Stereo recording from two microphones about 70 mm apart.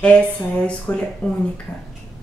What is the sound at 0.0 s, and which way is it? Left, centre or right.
A woman's voice, centre.